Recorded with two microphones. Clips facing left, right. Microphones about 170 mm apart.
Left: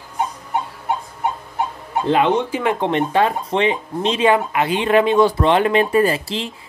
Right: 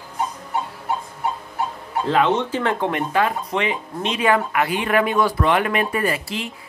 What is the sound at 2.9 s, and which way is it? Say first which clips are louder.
Speech: left 4 dB; 30° left (ahead or behind).